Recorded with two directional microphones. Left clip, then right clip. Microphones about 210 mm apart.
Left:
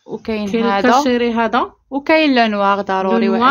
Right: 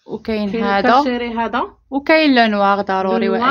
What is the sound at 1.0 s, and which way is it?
Speech, 50° left (ahead or behind).